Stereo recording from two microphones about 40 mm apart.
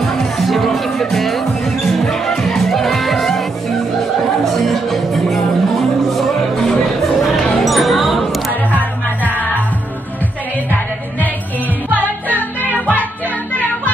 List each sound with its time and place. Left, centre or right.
0.0 s music: centre
4.5 s music: centre
7.6 s music: centre
8.7 s music: right